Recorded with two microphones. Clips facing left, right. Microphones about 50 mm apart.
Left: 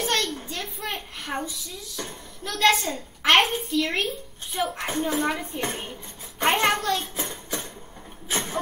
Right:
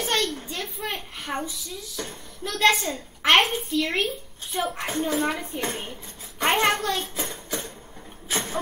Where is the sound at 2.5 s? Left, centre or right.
Centre.